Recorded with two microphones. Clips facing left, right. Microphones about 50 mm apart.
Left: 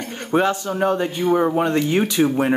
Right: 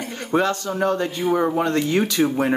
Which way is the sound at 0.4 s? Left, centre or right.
Centre.